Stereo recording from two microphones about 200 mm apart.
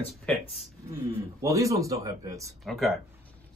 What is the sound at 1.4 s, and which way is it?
Speech, 15° right (ahead or behind).